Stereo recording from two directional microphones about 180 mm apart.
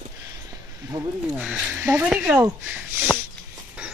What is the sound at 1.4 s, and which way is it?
Speech, 5° right (ahead or behind).